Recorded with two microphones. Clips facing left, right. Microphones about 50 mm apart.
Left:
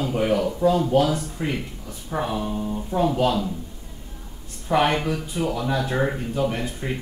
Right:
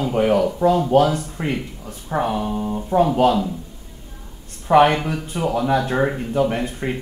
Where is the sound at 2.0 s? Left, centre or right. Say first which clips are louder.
Right 4 dB; right.